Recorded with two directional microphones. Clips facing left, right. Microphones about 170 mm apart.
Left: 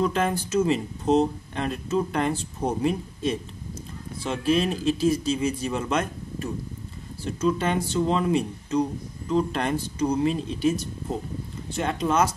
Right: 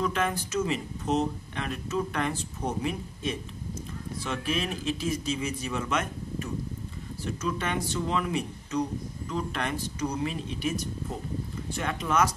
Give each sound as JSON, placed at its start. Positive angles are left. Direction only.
{"t": 0.0, "sound": "speech", "side_deg": 30}